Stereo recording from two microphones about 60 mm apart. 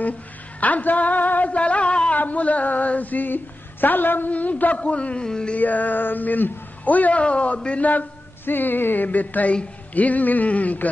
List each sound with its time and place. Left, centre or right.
0.6 s a sound: left
3.8 s speech: left; by 5.6 s centre
5.6 s speech: left